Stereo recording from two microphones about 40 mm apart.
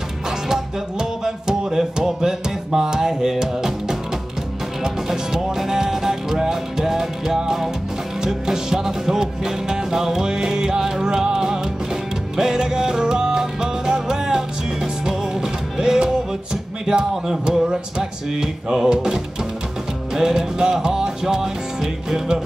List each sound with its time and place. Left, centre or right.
0.5 s music: centre
4.8 s music: centre